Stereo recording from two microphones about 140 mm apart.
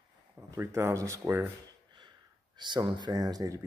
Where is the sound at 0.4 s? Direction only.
15° right (ahead or behind).